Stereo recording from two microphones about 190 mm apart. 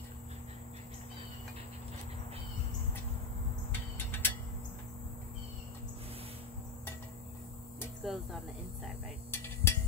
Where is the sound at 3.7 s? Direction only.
10° left (ahead or behind).